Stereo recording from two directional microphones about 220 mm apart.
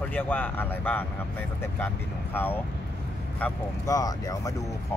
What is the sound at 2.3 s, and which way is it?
Speech, 10° left (ahead or behind).